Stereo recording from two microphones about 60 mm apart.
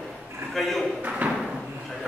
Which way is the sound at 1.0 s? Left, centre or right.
Right.